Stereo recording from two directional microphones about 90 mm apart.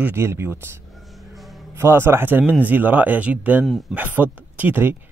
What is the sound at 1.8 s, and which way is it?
Speech, 25° right (ahead or behind).